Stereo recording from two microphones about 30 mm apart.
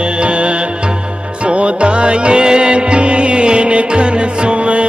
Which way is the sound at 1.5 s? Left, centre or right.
Right.